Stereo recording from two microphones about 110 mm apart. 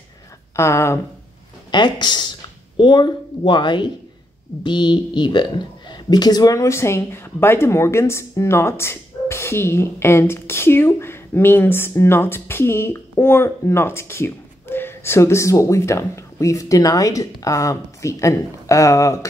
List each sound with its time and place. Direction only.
0.6 s a woman's voice: 25° left (ahead or behind)
1.7 s a woman's voice: 45° left (ahead or behind)